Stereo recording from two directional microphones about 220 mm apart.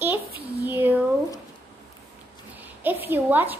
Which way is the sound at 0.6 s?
10° right (ahead or behind).